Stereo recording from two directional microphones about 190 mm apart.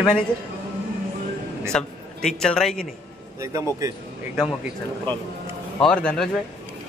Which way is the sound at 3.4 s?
15° right (ahead or behind).